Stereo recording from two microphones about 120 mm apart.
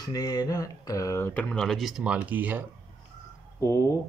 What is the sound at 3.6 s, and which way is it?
Speech, 25° left (ahead or behind).